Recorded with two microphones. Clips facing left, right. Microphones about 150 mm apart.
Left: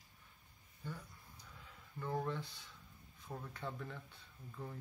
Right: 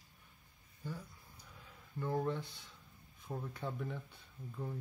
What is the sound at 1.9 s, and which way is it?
Speech, 10° right (ahead or behind).